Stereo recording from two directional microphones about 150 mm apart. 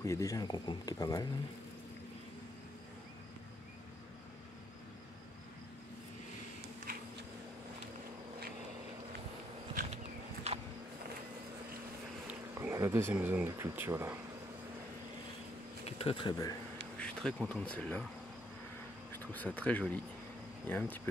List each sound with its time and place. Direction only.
0.0 s speech: 20° left (ahead or behind)
6.9 s a sound: 70° right (ahead or behind)
12.3 s a sound: 15° right (ahead or behind)
13.1 s speech: 10° right (ahead or behind)
15.8 s speech: 40° left (ahead or behind)
17.0 s speech: 5° left (ahead or behind)
19.1 s speech: 10° left (ahead or behind)